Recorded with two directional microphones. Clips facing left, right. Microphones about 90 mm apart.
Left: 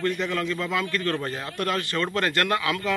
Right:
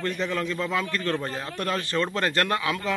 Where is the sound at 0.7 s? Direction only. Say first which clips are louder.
Left 1 dB; 25° right (ahead or behind).